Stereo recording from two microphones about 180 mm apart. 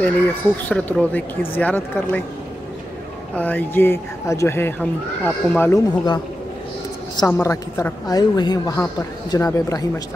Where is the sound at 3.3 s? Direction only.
10° left (ahead or behind).